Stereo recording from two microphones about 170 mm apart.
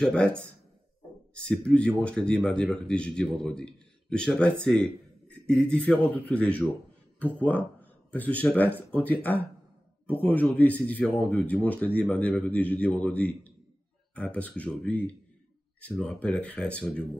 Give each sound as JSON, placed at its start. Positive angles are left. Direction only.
{"t": 0.0, "sound": "speech", "side_deg": 5}